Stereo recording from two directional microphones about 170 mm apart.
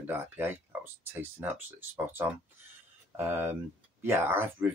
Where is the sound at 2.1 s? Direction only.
10° right (ahead or behind).